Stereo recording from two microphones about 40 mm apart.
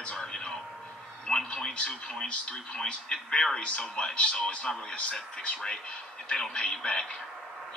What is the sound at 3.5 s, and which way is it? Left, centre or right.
Speech, left.